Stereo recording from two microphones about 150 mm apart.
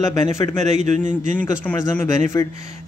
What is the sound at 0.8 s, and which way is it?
Speech, 55° right (ahead or behind).